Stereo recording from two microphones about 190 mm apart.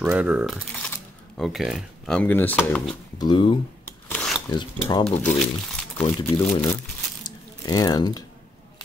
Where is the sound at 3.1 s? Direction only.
25° left (ahead or behind).